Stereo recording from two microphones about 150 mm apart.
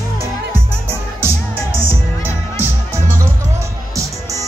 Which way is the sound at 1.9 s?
15° right (ahead or behind).